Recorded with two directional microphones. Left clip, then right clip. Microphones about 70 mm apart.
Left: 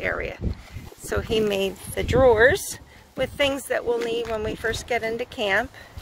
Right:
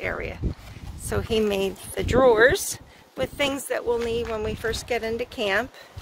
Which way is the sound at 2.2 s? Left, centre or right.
Right.